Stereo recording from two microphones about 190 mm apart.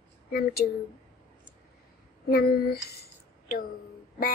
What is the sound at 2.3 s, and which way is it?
Speech, 55° left (ahead or behind).